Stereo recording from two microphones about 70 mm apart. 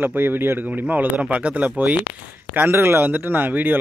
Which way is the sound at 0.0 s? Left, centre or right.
Right.